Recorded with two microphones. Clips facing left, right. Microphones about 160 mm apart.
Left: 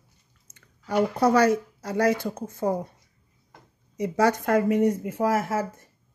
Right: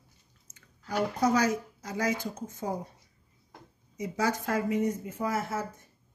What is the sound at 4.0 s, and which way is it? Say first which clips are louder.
Speech: left 7 dB; 70° left (ahead or behind).